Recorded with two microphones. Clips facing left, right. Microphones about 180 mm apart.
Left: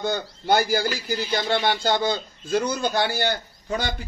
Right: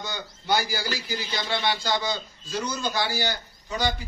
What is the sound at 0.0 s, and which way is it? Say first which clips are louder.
A man's voice: left 9 dB; 55° left (ahead or behind).